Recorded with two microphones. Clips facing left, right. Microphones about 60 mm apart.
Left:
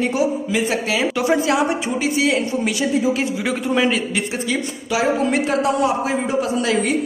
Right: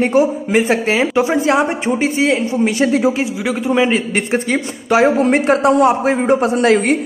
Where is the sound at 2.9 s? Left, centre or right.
Right.